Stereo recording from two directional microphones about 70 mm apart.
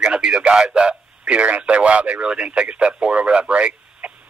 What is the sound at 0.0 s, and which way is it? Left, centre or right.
A man's voice, centre.